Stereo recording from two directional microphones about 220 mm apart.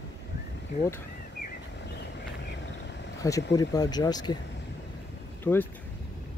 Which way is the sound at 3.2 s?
15° left (ahead or behind).